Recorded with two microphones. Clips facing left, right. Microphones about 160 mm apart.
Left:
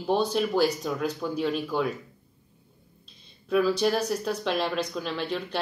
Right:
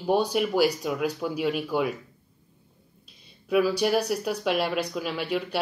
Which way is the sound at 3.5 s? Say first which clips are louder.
Right 1 dB; 10° right (ahead or behind).